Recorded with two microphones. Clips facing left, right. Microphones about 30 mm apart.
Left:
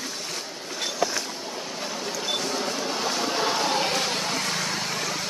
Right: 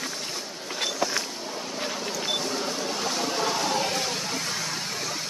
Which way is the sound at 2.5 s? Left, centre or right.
Centre.